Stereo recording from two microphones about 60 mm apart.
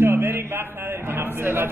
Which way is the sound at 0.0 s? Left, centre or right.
Right.